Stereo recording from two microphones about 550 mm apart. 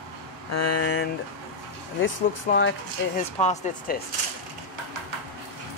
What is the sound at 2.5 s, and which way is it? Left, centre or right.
Speech, centre.